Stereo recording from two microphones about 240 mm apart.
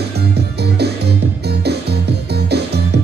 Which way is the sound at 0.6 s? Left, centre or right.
Right.